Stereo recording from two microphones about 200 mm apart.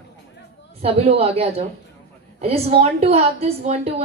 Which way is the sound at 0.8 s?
30° right (ahead or behind).